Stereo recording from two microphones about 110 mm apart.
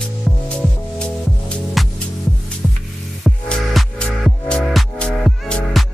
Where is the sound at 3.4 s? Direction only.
10° left (ahead or behind).